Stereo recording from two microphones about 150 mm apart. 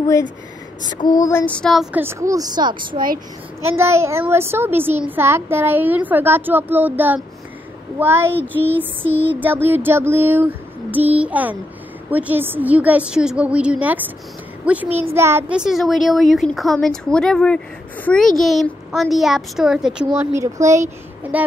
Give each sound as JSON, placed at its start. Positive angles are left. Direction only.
{"t": 0.9, "sound": "child singing", "side_deg": 25}
{"t": 2.0, "sound": "speech", "side_deg": -20}
{"t": 2.9, "sound": "speech", "side_deg": -70}
{"t": 3.6, "sound": "female singing", "side_deg": -15}
{"t": 8.4, "sound": "child singing", "side_deg": 10}
{"t": 8.7, "sound": "female singing", "side_deg": -15}
{"t": 15.5, "sound": "a woman's voice", "side_deg": -5}
{"t": 20.3, "sound": "a child's voice", "side_deg": -20}